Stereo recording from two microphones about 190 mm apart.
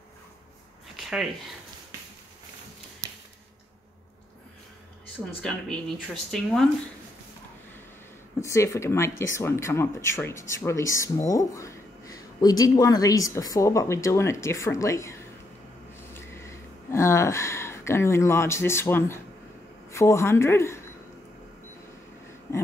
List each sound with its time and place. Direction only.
5.4 s speech: 5° left (ahead or behind)
8.4 s speech: 15° left (ahead or behind)
22.5 s a sound: 15° left (ahead or behind)